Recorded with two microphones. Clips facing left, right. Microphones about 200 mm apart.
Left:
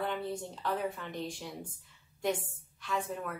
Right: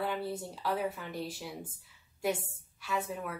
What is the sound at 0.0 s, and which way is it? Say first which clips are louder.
A woman's voice: even; 5° right (ahead or behind).